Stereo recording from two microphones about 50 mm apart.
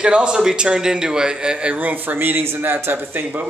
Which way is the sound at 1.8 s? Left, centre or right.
Right.